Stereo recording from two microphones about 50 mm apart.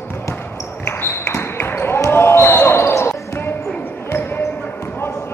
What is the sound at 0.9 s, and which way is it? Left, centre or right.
Basketball bounce, left.